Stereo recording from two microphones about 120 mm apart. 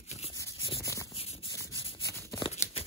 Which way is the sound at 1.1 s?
50° left (ahead or behind).